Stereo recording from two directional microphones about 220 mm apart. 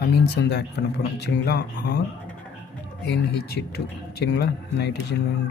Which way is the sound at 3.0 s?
45° left (ahead or behind).